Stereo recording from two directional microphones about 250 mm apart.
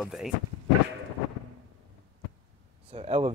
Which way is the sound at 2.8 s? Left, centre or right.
Right.